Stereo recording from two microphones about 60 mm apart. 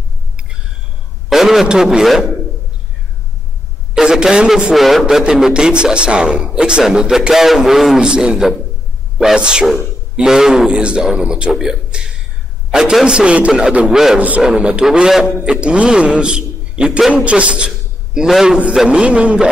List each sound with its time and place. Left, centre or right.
1.3 s a man's voice: centre
3.9 s a man's voice: centre
4.7 s a man's voice: centre
5.0 s a man's voice: centre
11.5 s a man's voice: centre
13.0 s a man's voice: centre